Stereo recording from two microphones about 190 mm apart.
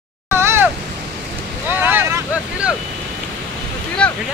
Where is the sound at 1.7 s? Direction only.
10° right (ahead or behind).